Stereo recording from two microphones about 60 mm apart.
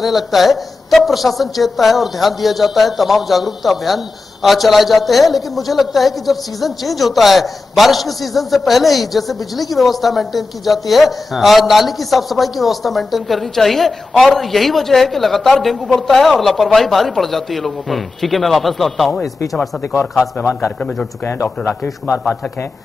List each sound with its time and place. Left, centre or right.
0.0 s a woman's voice: centre
21.3 s speech: left